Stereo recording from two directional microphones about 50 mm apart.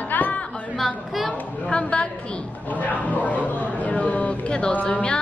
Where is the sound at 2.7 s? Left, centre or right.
Left.